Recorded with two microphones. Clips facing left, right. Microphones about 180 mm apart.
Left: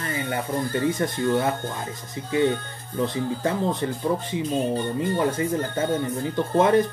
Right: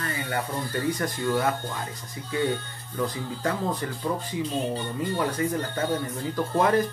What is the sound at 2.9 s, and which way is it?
Speech, 25° left (ahead or behind).